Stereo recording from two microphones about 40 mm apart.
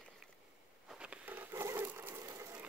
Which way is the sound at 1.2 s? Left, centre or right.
Right.